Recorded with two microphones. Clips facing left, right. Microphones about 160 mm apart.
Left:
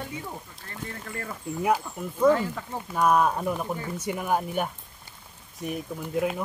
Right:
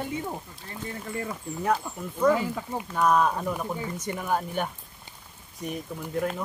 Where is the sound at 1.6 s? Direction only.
10° left (ahead or behind).